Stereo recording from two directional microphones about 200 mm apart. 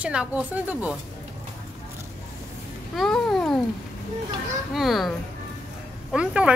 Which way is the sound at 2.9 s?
Centre (ahead or behind).